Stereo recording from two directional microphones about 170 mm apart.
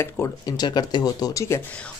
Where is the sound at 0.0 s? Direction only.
20° left (ahead or behind).